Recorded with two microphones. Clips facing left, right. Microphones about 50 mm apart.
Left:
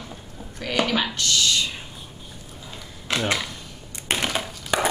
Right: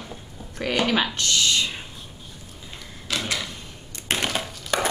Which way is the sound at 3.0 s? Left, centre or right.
Left.